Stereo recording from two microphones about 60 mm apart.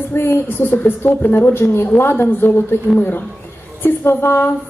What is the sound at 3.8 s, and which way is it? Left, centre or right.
Speech, left.